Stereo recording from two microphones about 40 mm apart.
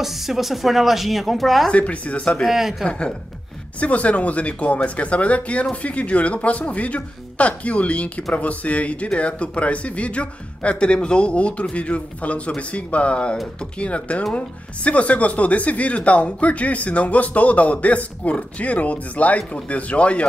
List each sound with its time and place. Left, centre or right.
0.0 s speech: centre
1.7 s speech: left
2.4 s speech: centre
2.8 s speech: left
3.8 s speech: left